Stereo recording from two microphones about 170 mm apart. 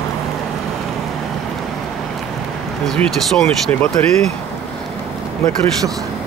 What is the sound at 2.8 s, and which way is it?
Speech, 5° left (ahead or behind).